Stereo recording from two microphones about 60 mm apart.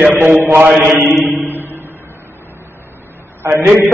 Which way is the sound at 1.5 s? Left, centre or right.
Right.